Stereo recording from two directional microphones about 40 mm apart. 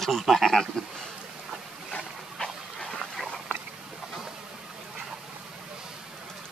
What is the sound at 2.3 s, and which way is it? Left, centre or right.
Dog, centre.